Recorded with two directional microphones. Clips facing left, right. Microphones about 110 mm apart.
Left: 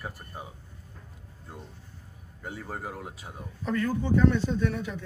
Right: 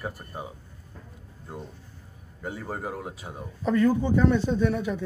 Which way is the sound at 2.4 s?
20° right (ahead or behind).